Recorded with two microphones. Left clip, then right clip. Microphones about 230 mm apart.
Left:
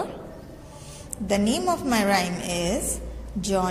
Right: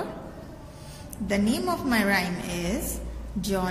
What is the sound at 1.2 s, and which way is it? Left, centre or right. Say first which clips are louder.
A woman's voice: left 3 dB; centre.